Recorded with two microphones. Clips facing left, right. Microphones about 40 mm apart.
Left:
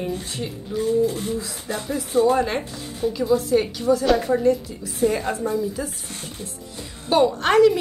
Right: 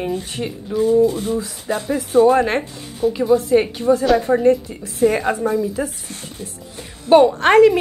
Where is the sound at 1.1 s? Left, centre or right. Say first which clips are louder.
Right 5 dB; right.